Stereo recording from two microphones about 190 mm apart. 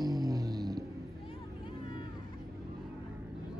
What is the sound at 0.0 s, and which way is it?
Music, 20° right (ahead or behind).